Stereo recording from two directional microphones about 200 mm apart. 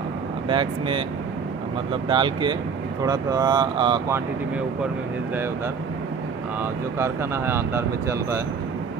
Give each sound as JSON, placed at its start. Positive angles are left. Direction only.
{"t": 0.5, "sound": "speech", "side_deg": -25}
{"t": 6.6, "sound": "speech", "side_deg": -10}